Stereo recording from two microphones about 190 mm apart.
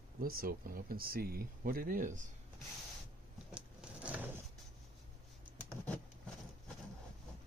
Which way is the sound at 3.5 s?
5° right (ahead or behind).